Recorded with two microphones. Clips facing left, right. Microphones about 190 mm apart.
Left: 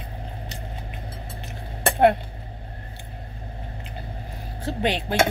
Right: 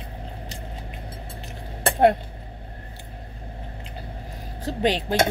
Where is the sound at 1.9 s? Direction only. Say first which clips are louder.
Even; 40° right (ahead or behind).